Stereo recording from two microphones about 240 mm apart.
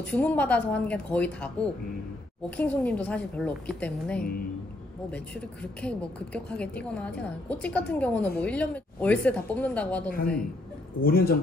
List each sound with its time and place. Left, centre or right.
0.0 s a woman's voice: centre
11.1 s speech: left